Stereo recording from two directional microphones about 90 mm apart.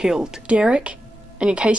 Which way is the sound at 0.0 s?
5° right (ahead or behind).